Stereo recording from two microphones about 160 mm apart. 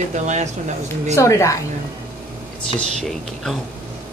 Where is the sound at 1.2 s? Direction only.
20° left (ahead or behind).